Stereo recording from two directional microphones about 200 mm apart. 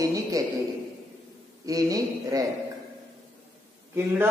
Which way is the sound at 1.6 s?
15° right (ahead or behind).